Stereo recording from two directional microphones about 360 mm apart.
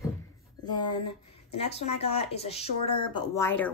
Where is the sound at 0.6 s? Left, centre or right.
Centre.